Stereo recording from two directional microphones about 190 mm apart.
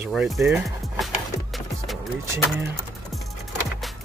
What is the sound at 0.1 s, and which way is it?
Speech, centre (ahead or behind).